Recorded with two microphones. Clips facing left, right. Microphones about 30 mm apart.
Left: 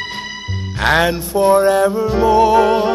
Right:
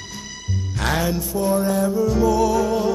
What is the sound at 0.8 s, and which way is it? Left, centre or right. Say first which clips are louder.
Music: left 8 dB; left.